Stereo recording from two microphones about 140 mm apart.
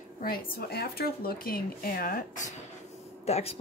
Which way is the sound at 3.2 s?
45° left (ahead or behind).